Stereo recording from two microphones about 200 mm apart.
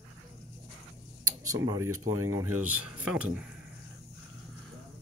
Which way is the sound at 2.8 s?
5° right (ahead or behind).